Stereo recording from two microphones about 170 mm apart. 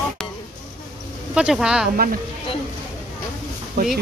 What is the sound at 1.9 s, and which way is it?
Speech, 55° right (ahead or behind).